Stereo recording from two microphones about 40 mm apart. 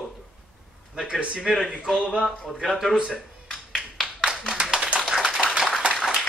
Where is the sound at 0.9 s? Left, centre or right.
Centre.